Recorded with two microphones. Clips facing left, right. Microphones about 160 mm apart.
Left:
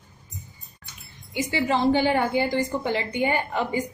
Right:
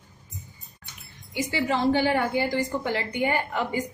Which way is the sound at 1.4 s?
20° left (ahead or behind).